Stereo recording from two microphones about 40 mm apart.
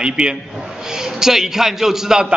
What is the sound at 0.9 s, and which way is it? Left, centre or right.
A man's voice, centre.